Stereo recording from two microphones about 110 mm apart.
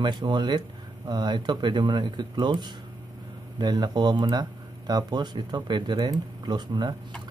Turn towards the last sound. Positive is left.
turn(degrees=-40)  # may be behind; listen again after turning